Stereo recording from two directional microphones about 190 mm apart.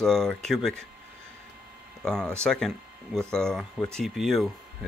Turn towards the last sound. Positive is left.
turn(degrees=0)  # may be behind; listen again after turning